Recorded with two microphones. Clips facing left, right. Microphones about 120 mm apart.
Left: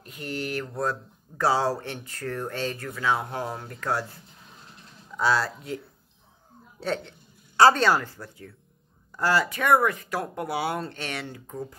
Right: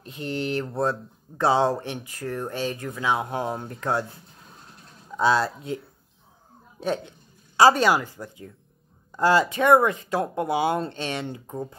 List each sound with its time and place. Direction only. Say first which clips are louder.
0.0 s speech: right 4 dB; 25° right (ahead or behind)
5.1 s speech: right 3 dB; 20° right (ahead or behind)
6.8 s speech: right 2 dB; 15° right (ahead or behind)